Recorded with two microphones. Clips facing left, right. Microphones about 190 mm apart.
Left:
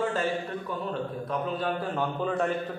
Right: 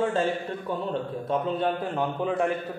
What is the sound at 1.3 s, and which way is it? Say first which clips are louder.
A man's voice: right 5 dB; 20° right (ahead or behind).